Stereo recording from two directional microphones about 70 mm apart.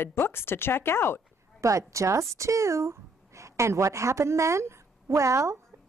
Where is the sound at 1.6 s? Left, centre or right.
Right.